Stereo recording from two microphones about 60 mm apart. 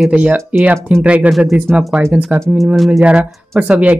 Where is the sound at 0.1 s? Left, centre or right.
Right.